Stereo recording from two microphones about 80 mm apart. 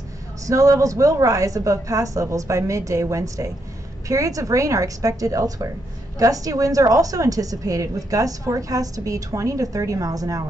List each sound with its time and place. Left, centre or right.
0.5 s a woman's voice: right